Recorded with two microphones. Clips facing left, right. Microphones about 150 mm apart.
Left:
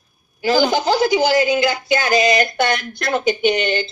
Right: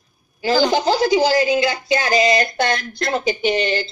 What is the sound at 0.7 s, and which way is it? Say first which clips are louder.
Speech: even; 30° right (ahead or behind).